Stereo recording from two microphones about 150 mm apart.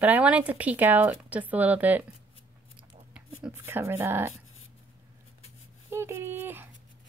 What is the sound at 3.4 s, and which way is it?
Speech, 15° right (ahead or behind).